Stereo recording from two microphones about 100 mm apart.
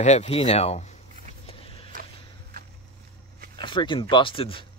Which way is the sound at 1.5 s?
70° left (ahead or behind).